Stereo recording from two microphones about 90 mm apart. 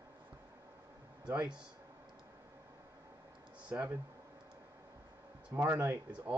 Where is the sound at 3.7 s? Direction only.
15° right (ahead or behind).